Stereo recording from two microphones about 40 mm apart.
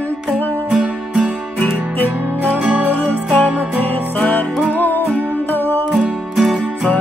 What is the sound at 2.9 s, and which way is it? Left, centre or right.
Music, left.